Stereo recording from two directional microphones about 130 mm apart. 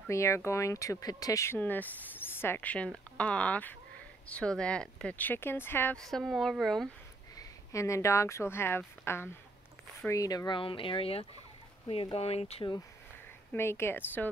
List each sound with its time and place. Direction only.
0.1 s speech: 20° left (ahead or behind)
5.9 s speech: centre (ahead or behind)
7.3 s speech: 25° left (ahead or behind); by 12.6 s 50° left (ahead or behind)
13.5 s speech: 20° left (ahead or behind)